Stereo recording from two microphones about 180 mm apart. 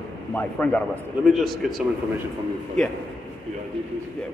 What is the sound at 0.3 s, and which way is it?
A man's voice, 10° left (ahead or behind).